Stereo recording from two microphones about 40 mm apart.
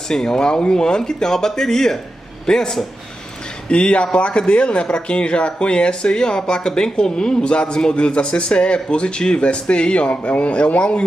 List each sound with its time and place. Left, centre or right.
0.1 s a man's voice: centre